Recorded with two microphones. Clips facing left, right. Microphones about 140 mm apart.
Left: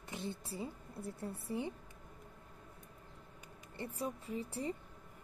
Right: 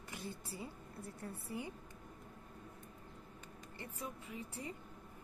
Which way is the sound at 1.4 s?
25° left (ahead or behind).